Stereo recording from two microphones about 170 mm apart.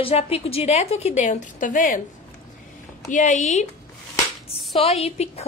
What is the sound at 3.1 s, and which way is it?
Speech, 45° left (ahead or behind).